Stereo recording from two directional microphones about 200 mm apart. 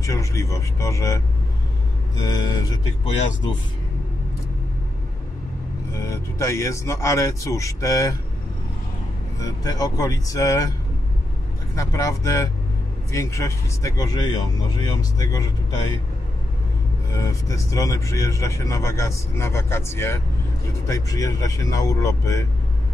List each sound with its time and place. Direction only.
0.0 s speech: 15° left (ahead or behind)
5.9 s speech: 15° left (ahead or behind)
9.4 s speech: 20° left (ahead or behind)
11.7 s speech: 15° left (ahead or behind)
17.1 s speech: 15° left (ahead or behind)